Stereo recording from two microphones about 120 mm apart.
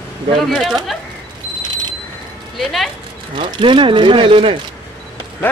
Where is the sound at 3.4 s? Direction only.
40° right (ahead or behind).